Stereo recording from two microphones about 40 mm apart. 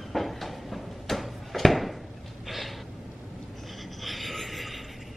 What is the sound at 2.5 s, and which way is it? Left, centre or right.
Gasp, centre.